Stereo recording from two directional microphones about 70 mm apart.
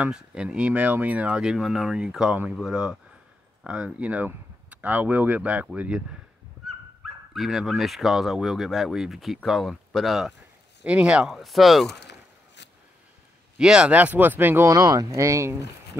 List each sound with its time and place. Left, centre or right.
0.1 s speech: centre
1.4 s speech: centre
7.0 s speech: centre
10.8 s speech: centre
11.3 s speech: centre
13.6 s speech: centre; by 14.7 s right
14.7 s speech: right